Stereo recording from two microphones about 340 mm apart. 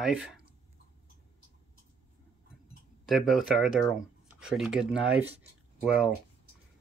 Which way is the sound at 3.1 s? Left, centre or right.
Centre.